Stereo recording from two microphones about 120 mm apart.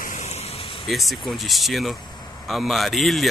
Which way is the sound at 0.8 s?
Centre (ahead or behind).